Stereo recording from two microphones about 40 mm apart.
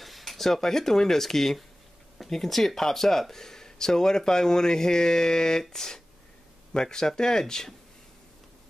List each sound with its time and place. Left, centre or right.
0.0 s speech: centre